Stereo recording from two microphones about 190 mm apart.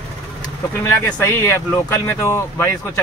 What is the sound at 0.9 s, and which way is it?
Speech, 15° left (ahead or behind).